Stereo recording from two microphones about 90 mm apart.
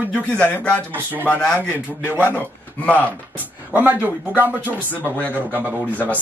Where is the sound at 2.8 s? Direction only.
20° left (ahead or behind).